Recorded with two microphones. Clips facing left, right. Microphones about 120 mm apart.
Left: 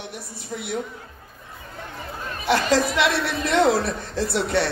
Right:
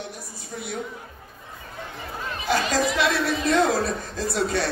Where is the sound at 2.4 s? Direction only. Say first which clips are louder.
Left 3 dB; 65° left (ahead or behind).